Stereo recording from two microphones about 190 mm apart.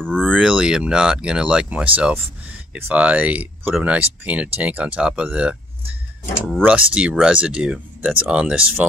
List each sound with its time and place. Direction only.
0.0 s speech: 5° left (ahead or behind)